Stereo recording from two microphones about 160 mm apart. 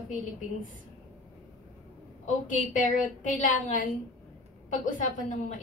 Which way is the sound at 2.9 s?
55° left (ahead or behind).